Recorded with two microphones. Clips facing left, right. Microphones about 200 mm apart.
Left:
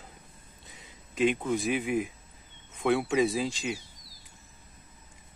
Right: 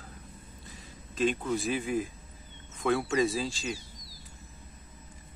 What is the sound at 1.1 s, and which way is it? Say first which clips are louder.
Speech: left 2 dB; 15° left (ahead or behind).